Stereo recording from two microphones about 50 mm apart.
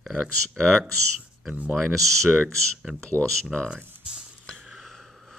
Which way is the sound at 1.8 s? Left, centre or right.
Centre.